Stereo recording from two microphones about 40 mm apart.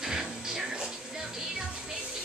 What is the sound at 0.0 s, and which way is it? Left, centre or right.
Music, centre.